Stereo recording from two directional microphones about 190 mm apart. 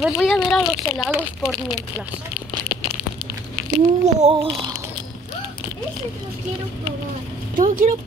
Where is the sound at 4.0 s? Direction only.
35° right (ahead or behind).